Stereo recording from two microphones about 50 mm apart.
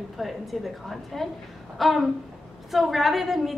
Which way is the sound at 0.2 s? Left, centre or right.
Centre.